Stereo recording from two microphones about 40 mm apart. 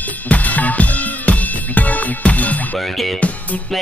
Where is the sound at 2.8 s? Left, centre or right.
Centre.